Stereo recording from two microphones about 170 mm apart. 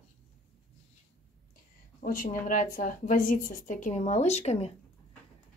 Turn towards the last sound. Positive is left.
turn(degrees=40)  # may be behind; listen again after turning